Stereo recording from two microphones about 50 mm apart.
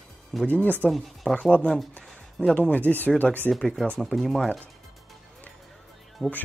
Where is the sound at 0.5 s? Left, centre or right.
Left.